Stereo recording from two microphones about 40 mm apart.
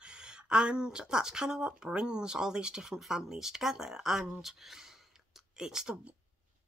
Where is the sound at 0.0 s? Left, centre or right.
Right.